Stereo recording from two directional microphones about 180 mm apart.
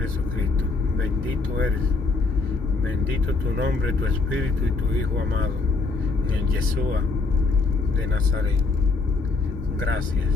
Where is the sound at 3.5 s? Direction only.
90° right.